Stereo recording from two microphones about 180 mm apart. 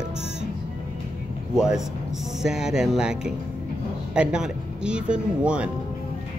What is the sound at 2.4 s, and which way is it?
Speech, 5° right (ahead or behind).